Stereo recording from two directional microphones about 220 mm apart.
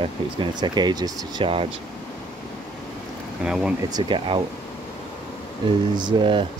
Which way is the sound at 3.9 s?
20° right (ahead or behind).